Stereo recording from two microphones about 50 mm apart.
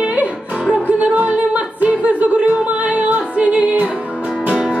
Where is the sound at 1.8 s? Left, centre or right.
Right.